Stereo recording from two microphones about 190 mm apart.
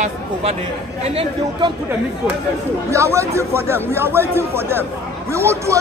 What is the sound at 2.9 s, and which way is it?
Speech, 15° right (ahead or behind).